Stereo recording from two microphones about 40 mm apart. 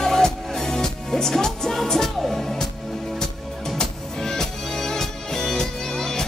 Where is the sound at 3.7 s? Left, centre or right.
Centre.